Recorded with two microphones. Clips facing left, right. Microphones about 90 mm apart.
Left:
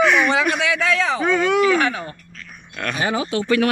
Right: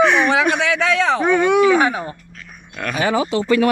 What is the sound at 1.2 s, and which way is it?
Speech, 20° right (ahead or behind).